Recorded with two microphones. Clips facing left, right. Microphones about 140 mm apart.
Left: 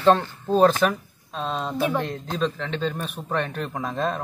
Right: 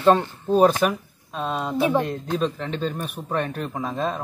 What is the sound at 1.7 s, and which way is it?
Speech, 25° right (ahead or behind).